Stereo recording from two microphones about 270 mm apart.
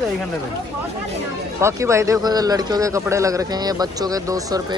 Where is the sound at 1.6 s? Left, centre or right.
Centre.